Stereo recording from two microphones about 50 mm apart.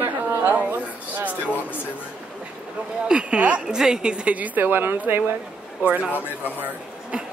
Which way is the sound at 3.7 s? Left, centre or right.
Centre.